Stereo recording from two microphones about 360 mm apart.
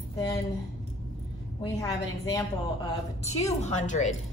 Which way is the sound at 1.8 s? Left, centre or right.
Centre.